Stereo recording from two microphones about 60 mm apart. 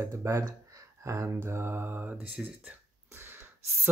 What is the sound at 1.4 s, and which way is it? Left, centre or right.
Mantra, right.